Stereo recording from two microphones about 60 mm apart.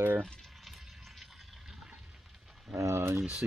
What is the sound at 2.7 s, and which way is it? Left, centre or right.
Boiling, right.